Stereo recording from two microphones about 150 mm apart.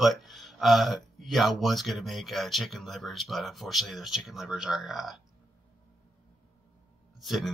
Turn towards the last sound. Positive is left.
turn(degrees=0)  # may be behind; listen again after turning